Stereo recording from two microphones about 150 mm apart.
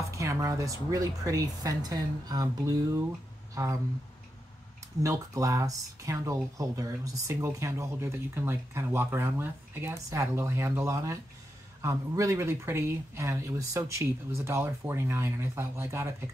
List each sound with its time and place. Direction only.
0.1 s speech: 20° right (ahead or behind)
5.0 s speech: 20° right (ahead or behind)